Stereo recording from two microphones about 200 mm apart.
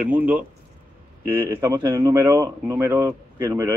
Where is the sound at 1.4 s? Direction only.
15° right (ahead or behind).